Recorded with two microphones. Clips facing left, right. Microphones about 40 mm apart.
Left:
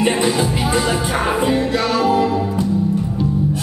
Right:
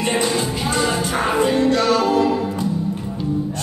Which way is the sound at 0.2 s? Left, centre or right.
Centre.